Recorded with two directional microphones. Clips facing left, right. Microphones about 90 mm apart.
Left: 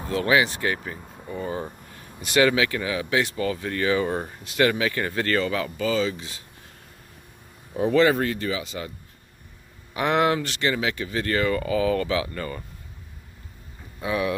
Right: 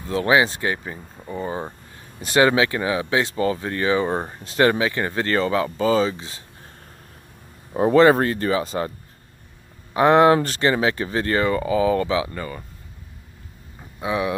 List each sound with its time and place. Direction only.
0.1 s speech: 30° right (ahead or behind)
7.7 s speech: 40° right (ahead or behind)
9.9 s speech: 30° right (ahead or behind)
13.9 s speech: 20° right (ahead or behind)